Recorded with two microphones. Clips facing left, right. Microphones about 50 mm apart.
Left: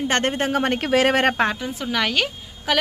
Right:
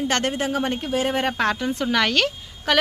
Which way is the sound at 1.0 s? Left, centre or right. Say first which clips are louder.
Left 5 dB; left.